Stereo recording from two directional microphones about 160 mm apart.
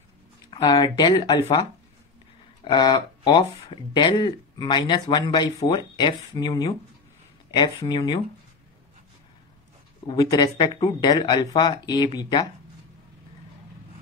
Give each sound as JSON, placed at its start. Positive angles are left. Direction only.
{"t": 0.5, "sound": "speech", "side_deg": 30}
{"t": 2.6, "sound": "speech", "side_deg": 25}
{"t": 10.0, "sound": "speech", "side_deg": 25}